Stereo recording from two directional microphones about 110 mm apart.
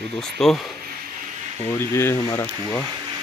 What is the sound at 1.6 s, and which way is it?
Speech, 25° left (ahead or behind).